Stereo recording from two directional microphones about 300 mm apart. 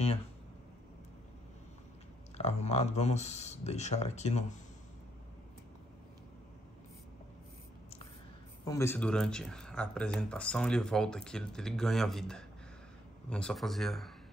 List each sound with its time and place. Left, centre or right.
2.3 s speech: left
8.6 s speech: centre